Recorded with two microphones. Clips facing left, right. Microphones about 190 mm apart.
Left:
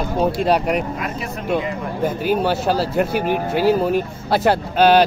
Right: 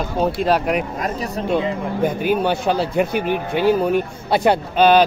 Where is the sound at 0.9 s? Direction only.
40° right (ahead or behind).